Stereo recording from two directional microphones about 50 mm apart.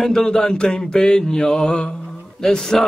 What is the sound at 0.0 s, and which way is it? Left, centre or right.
Mantra, centre.